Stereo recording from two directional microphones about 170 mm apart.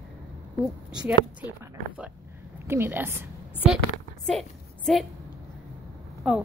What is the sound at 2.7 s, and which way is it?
A woman's voice, 10° right (ahead or behind).